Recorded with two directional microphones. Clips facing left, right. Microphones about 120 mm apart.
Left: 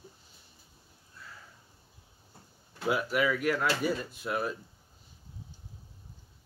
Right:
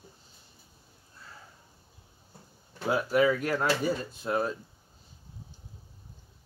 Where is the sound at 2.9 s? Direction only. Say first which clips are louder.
Right 5 dB; 30° right (ahead or behind).